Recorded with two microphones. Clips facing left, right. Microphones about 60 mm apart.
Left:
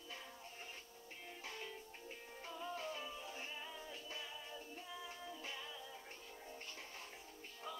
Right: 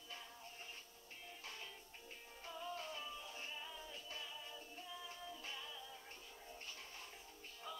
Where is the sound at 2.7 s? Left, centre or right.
Left.